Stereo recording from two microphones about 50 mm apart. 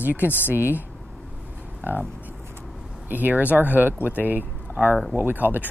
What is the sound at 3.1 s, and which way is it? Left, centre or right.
Speech, right.